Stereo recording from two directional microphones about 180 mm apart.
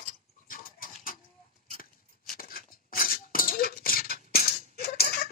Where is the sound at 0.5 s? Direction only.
50° left (ahead or behind).